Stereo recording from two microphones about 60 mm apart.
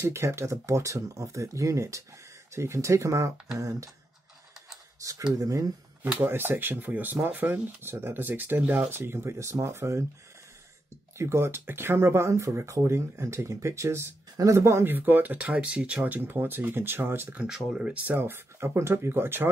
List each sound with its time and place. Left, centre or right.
0.0 s speech: right
2.5 s speech: right
3.5 s speech: right
5.0 s speech: right
6.2 s speech: right
11.1 s speech: right
14.6 s speech: right
14.9 s speech: right
15.3 s speech: centre; by 17.4 s right
17.5 s speech: centre
18.0 s speech: right